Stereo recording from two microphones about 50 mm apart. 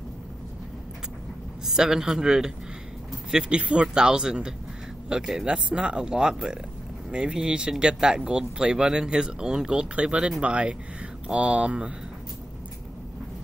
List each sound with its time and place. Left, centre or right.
1.7 s speech: centre